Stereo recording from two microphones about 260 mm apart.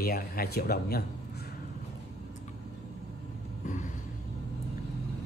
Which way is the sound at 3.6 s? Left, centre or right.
Left.